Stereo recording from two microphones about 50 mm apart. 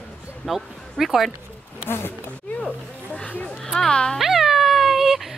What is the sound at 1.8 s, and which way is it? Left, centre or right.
Speech, left.